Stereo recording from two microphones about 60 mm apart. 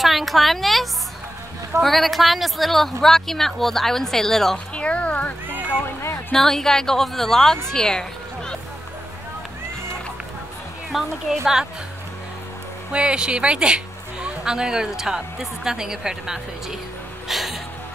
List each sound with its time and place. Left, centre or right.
0.0 s a woman's voice: centre
4.7 s a sound: centre
6.3 s a woman's voice: centre
10.9 s a woman's voice: centre
12.9 s a woman's voice: centre
17.3 s music: centre